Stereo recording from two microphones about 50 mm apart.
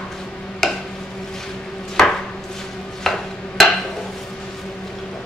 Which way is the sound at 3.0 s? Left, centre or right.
Centre.